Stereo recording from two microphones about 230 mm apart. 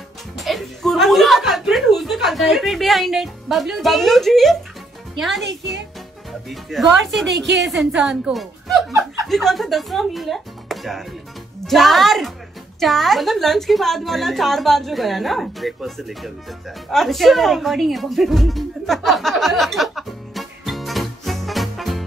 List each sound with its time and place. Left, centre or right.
0.4 s speech: centre
5.4 s speech: right
6.5 s a woman's voice: centre